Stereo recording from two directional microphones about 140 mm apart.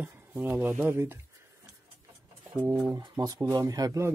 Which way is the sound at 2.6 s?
10° right (ahead or behind).